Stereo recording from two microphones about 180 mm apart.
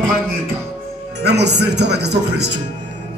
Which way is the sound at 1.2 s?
70° right (ahead or behind).